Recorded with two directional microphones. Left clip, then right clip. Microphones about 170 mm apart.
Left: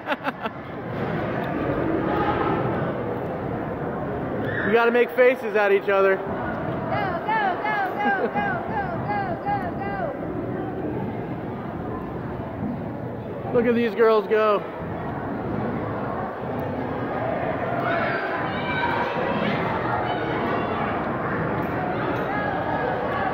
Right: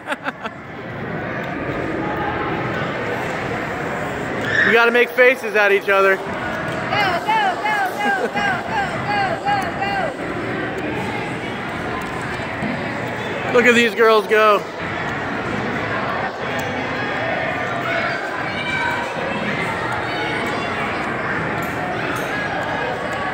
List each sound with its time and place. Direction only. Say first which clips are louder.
4.6 s speech: right 4 dB; centre (ahead or behind)
7.0 s a sound: right 7 dB; 85° right
13.6 s speech: right 6 dB; 5° right (ahead or behind)